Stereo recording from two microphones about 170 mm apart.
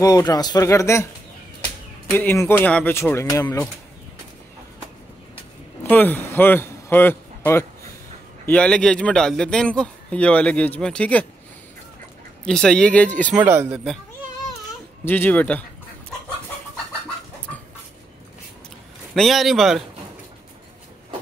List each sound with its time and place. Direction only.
0.0 s a man's voice: 20° left (ahead or behind)
2.0 s a man's voice: 10° left (ahead or behind)
3.4 s a man's voice: 10° left (ahead or behind)
5.9 s a man's voice: 10° left (ahead or behind)
12.4 s a man's voice: 5° left (ahead or behind)
13.4 s speech: 10° right (ahead or behind)
15.0 s a man's voice: 10° left (ahead or behind)
19.1 s a man's voice: centre (ahead or behind)